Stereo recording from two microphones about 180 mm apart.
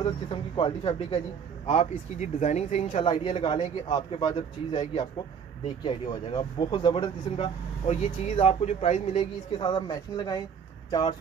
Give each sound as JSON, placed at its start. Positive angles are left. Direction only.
{"t": 0.0, "sound": "speech", "side_deg": 25}
{"t": 9.6, "sound": "speech", "side_deg": 25}